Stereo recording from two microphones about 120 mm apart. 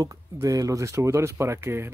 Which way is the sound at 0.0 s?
30° right (ahead or behind).